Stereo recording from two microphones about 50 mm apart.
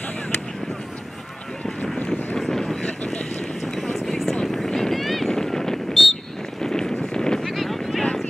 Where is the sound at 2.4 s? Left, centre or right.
Centre.